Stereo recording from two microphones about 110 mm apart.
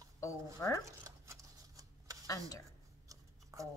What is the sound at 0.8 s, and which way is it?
Dog, 30° right (ahead or behind).